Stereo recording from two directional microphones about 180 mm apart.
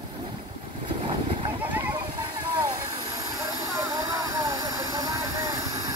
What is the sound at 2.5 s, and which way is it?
Vehicle, 20° right (ahead or behind).